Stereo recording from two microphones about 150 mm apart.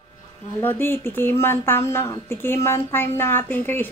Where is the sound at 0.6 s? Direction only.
15° left (ahead or behind).